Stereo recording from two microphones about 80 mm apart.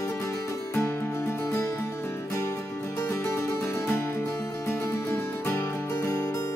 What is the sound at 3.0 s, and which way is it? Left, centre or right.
Music, left.